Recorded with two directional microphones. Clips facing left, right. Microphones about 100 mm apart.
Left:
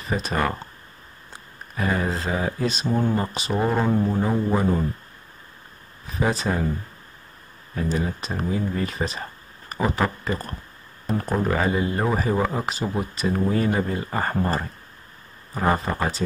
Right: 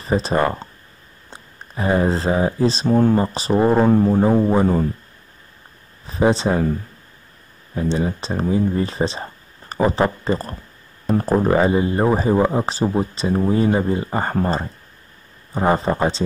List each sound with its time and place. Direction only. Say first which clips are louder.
0.0 s speech: right 6 dB; 30° right (ahead or behind)
2.9 s speech: right 7 dB; 55° right (ahead or behind)
3.2 s speech: right 7 dB; 35° right (ahead or behind)
6.0 s speech: right 7 dB; 30° right (ahead or behind)
7.7 s speech: right 5 dB; 25° right (ahead or behind)